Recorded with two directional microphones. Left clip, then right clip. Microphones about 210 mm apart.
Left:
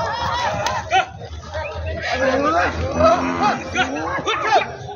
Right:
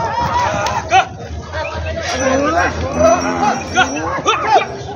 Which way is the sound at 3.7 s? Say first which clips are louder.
Right 6 dB; 25° right (ahead or behind).